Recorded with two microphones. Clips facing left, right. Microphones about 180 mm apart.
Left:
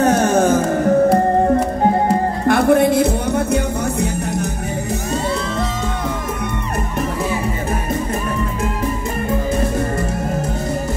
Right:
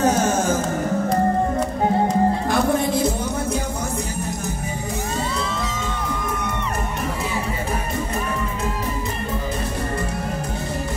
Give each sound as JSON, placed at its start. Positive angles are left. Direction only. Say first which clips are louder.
{"t": 2.4, "sound": "music", "louder": "left 7 dB", "side_deg": 65}